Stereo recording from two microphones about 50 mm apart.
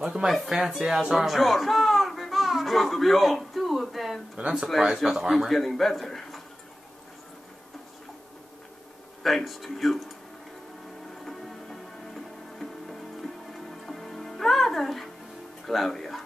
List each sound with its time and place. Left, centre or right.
0.0 s speech: centre
0.3 s a man's voice: centre
9.2 s a man's voice: centre
11.2 s music: centre